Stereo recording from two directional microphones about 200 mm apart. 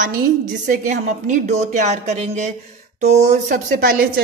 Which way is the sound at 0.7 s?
40° right (ahead or behind).